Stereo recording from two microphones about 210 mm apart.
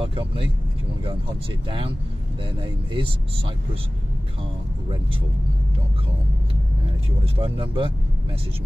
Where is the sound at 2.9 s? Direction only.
25° right (ahead or behind).